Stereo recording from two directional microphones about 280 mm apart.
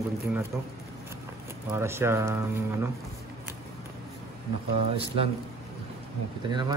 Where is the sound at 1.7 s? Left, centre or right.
Centre.